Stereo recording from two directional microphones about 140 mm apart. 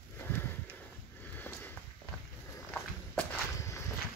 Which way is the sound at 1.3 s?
15° left (ahead or behind).